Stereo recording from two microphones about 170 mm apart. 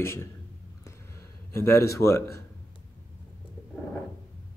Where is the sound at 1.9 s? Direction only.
15° left (ahead or behind).